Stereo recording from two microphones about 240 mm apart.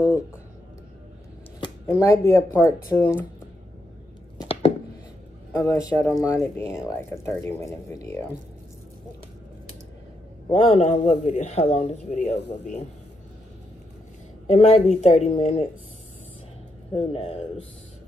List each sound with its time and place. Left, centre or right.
1.6 s speech: centre
4.4 s chopping: left
5.8 s speech: centre
10.5 s speech: left
12.4 s speech: left
14.5 s speech: left
16.9 s speech: left